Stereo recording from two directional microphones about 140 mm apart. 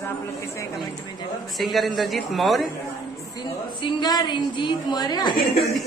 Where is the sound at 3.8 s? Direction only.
30° left (ahead or behind).